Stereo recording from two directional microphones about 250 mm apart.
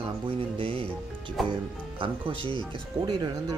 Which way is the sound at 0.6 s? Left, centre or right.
Right.